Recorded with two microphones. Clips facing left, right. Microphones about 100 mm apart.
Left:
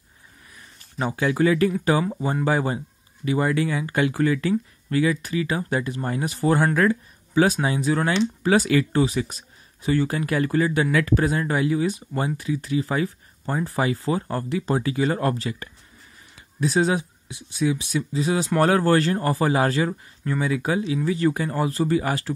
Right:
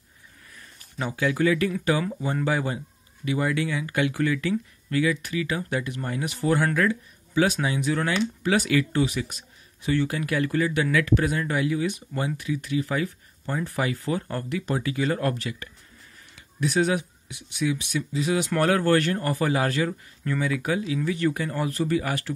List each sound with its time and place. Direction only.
0.9 s speech: 35° left (ahead or behind)